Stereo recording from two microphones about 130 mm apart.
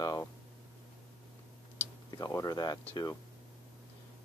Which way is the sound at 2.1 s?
25° left (ahead or behind).